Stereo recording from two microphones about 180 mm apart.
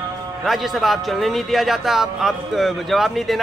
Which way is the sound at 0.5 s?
Centre (ahead or behind).